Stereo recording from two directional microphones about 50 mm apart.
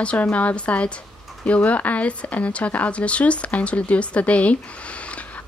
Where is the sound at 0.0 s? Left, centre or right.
Left.